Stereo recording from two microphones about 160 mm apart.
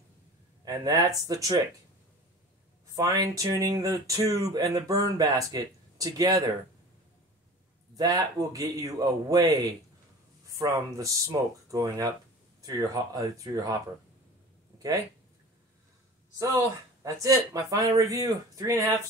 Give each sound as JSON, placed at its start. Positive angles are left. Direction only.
{"t": 0.7, "sound": "speech", "side_deg": -25}
{"t": 3.0, "sound": "speech", "side_deg": -20}
{"t": 7.9, "sound": "speech", "side_deg": -20}
{"t": 14.8, "sound": "speech", "side_deg": -20}
{"t": 16.3, "sound": "speech", "side_deg": -20}